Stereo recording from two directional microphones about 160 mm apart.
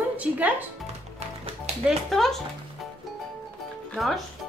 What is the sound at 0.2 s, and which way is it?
Speech, 10° right (ahead or behind).